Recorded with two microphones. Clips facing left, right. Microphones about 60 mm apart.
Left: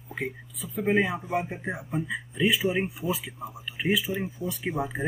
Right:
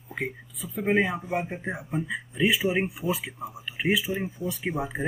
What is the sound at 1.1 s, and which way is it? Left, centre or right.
Speech, centre.